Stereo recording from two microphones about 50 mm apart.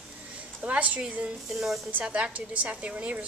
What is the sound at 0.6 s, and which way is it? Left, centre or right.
Speech, right.